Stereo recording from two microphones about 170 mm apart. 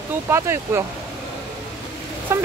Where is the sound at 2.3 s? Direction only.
15° right (ahead or behind).